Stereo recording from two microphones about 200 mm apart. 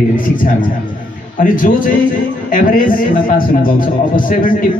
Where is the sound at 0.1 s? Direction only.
45° left (ahead or behind).